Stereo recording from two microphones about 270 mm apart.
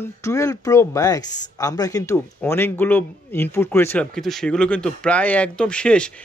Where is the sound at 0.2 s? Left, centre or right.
Centre.